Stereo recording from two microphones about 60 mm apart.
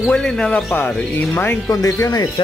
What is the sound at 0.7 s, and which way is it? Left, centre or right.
Speech, left.